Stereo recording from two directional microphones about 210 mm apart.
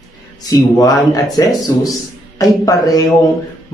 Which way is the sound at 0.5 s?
15° left (ahead or behind).